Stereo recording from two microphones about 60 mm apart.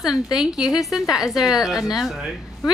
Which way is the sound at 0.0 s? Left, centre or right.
Centre.